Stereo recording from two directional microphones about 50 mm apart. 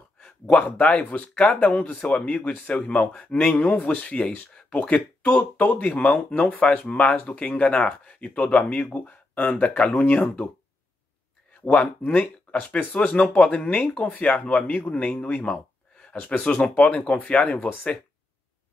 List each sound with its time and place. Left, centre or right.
0.2 s a sound: left
0.7 s speech: left
2.7 s speech: centre; by 6.8 s left
6.8 s speech: left
11.6 s speech: left
15.4 s speech: left